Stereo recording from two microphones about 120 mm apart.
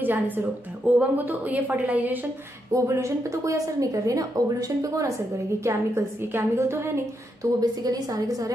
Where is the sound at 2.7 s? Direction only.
25° right (ahead or behind).